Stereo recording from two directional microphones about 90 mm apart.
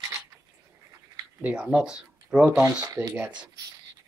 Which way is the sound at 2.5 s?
30° right (ahead or behind).